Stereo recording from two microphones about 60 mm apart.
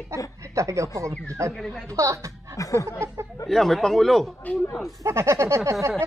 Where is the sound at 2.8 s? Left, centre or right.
Right.